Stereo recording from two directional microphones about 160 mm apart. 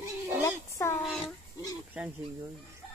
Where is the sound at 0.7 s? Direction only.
20° left (ahead or behind).